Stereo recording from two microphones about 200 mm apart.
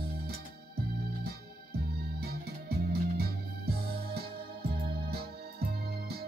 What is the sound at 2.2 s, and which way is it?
Music, 50° right (ahead or behind).